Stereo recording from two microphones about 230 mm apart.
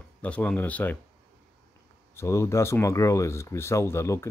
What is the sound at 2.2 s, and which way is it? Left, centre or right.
Speech, centre.